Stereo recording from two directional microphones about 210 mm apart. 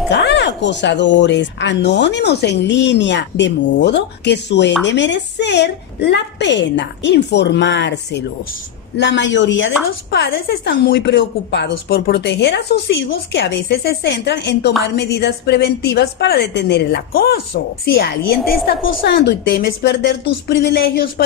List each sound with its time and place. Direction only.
0.1 s speech: 55° left (ahead or behind)
10.1 s speech: 50° left (ahead or behind)